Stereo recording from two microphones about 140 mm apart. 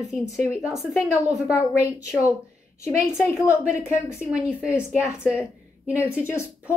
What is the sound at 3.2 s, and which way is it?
Speech, 20° left (ahead or behind).